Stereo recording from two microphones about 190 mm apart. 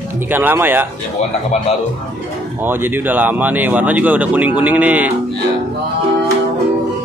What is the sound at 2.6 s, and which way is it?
Speech, 10° right (ahead or behind).